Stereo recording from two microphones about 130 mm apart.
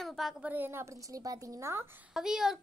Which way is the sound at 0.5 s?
15° right (ahead or behind).